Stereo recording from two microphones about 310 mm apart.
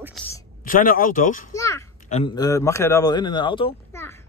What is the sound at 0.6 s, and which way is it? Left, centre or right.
Speech, left.